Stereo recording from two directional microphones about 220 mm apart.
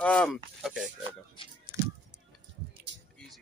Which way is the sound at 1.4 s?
25° left (ahead or behind).